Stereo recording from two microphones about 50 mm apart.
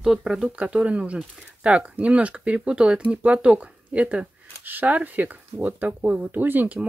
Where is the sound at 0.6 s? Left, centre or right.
Right.